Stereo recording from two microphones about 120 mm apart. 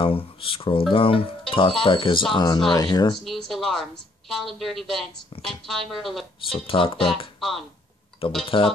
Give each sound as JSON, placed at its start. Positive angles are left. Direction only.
{"t": 0.0, "sound": "speech", "side_deg": 50}
{"t": 3.3, "sound": "a woman's voice", "side_deg": 0}
{"t": 6.4, "sound": "speech", "side_deg": 50}
{"t": 7.3, "sound": "speech", "side_deg": 0}
{"t": 8.5, "sound": "speech", "side_deg": 45}